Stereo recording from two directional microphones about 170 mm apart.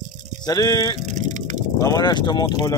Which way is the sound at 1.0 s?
45° right (ahead or behind).